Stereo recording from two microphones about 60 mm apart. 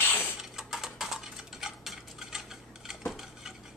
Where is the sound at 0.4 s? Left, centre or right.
Centre.